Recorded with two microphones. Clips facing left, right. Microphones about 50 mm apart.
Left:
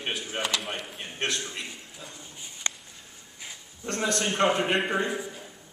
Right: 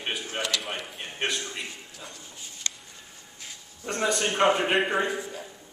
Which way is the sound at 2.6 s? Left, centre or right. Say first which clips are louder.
Left 3 dB; left.